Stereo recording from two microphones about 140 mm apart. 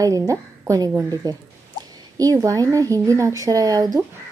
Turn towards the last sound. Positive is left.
turn(degrees=-25)  # may be behind; listen again after turning